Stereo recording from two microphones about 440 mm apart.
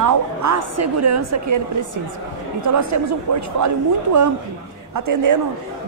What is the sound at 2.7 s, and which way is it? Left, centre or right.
Speech, right.